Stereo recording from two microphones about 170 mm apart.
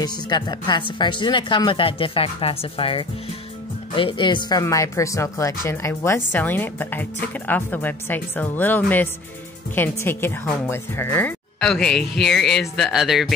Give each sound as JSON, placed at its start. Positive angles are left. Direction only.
{"t": 0.0, "sound": "speech", "side_deg": 25}